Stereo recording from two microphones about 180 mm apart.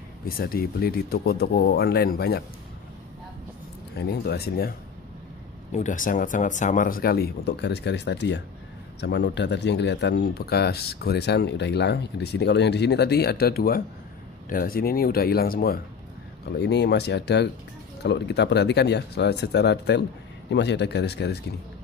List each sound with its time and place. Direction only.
0.2 s speech: 55° left (ahead or behind)
4.1 s speech: 65° left (ahead or behind)
5.7 s speech: 40° left (ahead or behind)
16.5 s speech: 65° left (ahead or behind)